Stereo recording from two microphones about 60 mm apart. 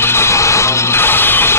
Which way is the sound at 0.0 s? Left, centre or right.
Left.